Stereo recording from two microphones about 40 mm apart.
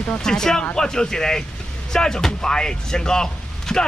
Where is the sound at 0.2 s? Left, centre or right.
Centre.